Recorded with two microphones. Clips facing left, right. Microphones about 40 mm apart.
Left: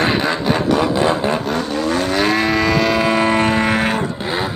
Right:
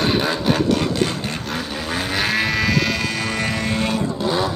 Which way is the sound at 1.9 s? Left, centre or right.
Centre.